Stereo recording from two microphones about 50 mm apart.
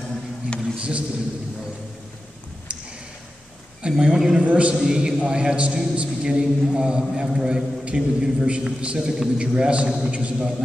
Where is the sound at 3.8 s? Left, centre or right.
Right.